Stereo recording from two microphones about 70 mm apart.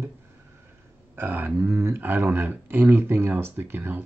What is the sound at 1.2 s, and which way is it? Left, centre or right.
Speech, right.